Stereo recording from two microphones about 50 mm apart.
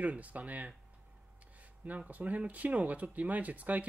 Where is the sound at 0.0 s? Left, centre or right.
Right.